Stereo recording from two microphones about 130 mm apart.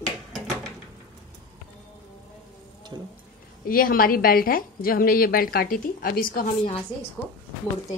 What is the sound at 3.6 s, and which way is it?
A woman's voice, 90° left.